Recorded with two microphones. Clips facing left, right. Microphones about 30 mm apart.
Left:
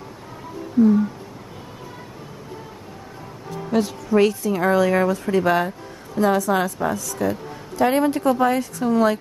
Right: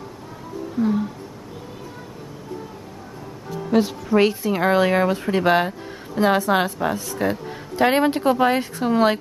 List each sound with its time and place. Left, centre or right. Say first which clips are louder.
3.4 s music: right 1 dB; centre
3.7 s speech: right 1 dB; centre
4.2 s speech: even; right